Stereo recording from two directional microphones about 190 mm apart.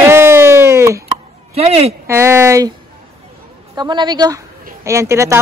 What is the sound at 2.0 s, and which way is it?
Speech, 15° right (ahead or behind).